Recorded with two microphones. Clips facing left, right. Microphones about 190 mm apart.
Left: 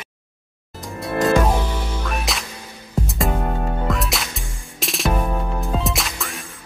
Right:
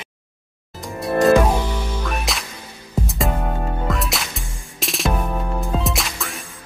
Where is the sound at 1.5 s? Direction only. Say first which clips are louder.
Right 1 dB; 10° right (ahead or behind).